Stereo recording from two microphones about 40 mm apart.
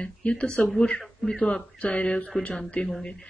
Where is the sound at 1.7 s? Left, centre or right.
Left.